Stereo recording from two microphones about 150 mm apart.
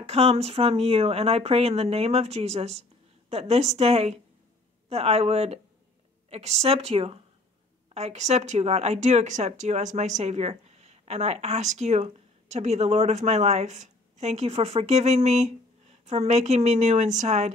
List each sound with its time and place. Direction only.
0.0 s speech: 45° right (ahead or behind)